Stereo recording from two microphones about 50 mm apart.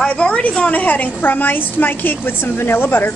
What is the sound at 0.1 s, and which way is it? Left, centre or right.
A woman's voice, left.